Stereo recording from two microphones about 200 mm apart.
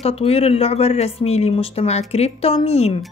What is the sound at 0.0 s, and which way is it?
A woman's voice, 30° left (ahead or behind).